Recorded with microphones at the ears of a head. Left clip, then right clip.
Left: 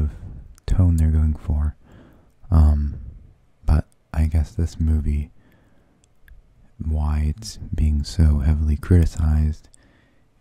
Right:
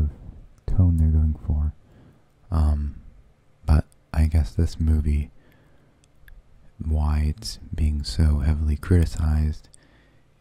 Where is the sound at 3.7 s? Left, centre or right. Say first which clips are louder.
Even; centre.